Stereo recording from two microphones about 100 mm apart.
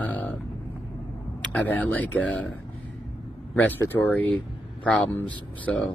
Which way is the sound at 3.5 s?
15° left (ahead or behind).